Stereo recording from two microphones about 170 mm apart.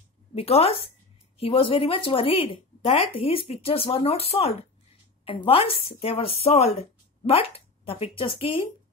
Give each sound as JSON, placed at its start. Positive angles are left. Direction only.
{"t": 0.3, "sound": "a woman's voice", "side_deg": 35}